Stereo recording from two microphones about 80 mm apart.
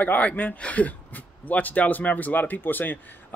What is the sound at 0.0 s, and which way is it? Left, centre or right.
Speech, centre.